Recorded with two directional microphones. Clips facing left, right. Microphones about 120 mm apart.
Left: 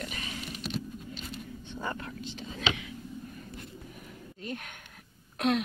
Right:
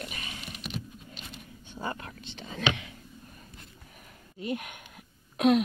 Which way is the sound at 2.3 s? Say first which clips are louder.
Right 3 dB; 60° right (ahead or behind).